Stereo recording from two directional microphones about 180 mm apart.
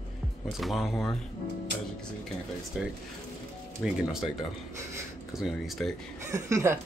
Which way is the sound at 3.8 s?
Centre (ahead or behind).